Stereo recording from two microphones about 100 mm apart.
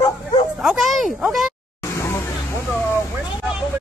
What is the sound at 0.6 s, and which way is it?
Speech, centre (ahead or behind).